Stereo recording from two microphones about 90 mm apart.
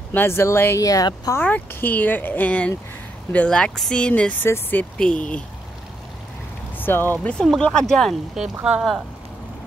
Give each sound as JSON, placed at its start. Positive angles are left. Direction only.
{"t": 0.1, "sound": "speech", "side_deg": 25}
{"t": 0.8, "sound": "speech", "side_deg": 40}
{"t": 1.3, "sound": "speech", "side_deg": 25}
{"t": 4.9, "sound": "speech", "side_deg": 10}
{"t": 6.8, "sound": "speech", "side_deg": 25}
{"t": 7.3, "sound": "speech", "side_deg": 5}